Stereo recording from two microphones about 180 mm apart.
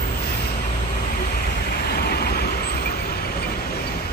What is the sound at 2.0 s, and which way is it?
Vehicle, 60° left (ahead or behind).